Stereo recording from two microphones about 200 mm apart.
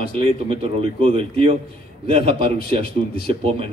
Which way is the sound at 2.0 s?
25° right (ahead or behind).